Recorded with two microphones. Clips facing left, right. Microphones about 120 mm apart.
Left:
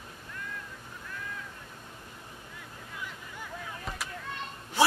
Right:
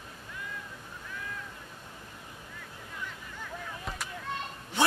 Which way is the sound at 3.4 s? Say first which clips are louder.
Even; centre (ahead or behind).